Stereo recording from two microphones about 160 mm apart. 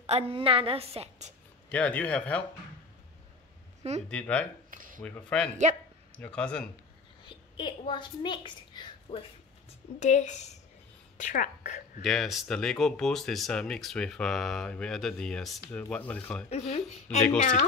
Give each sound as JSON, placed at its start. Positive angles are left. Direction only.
{"t": 0.0, "sound": "a woman's voice", "side_deg": -40}
{"t": 1.7, "sound": "a man's voice", "side_deg": 10}
{"t": 4.1, "sound": "a man's voice", "side_deg": 10}
{"t": 4.6, "sound": "a sound", "side_deg": -60}
{"t": 5.0, "sound": "a man's voice", "side_deg": 5}
{"t": 7.2, "sound": "a woman's voice", "side_deg": 30}
{"t": 9.9, "sound": "a woman's voice", "side_deg": 50}
{"t": 12.0, "sound": "a man's voice", "side_deg": 0}
{"t": 16.4, "sound": "speech", "side_deg": 40}